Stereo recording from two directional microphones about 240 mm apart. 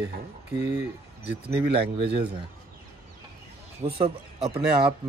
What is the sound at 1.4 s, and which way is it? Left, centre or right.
Speech, right.